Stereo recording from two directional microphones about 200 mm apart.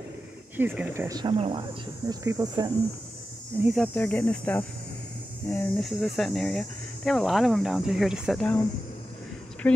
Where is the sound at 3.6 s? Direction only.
Centre (ahead or behind).